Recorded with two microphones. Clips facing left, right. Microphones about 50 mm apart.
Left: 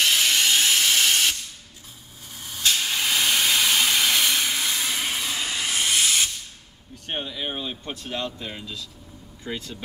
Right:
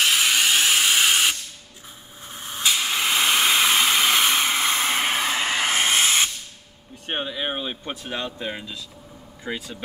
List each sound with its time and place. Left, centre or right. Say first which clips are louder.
0.0 s a sound: right 1 dB; centre
2.3 s spray: right 3 dB; right
2.6 s steam: right 1 dB; centre; by 6.3 s right
7.1 s speech: right 3 dB; right